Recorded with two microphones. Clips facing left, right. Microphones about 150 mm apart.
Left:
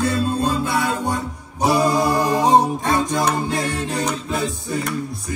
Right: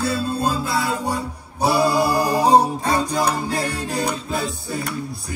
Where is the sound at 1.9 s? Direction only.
5° right (ahead or behind).